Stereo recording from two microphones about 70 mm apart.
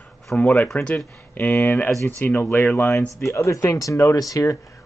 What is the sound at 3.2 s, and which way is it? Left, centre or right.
Speech, left.